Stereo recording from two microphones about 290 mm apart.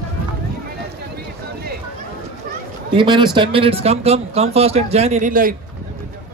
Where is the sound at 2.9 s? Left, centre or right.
Centre.